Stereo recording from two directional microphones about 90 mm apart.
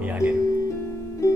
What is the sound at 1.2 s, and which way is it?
Music, 35° left (ahead or behind).